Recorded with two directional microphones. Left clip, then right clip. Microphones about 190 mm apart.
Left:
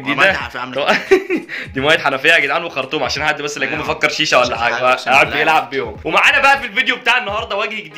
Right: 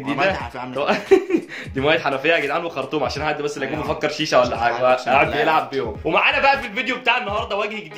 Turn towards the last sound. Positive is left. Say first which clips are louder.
# left 3 dB
turn(degrees=0)  # may be behind; listen again after turning